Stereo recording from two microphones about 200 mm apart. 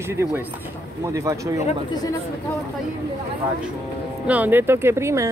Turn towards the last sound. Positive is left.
turn(degrees=-15)  # may be behind; listen again after turning